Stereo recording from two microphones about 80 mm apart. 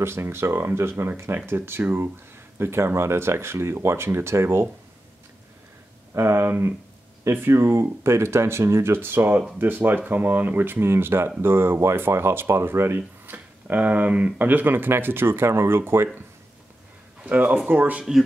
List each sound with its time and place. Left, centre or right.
0.0 s speech: right
6.1 s speech: right
17.2 s speech: centre